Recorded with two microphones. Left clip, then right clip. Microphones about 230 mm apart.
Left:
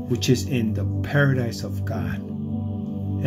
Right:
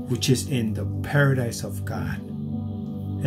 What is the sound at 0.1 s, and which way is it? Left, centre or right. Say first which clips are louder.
Speech: left 2 dB; centre.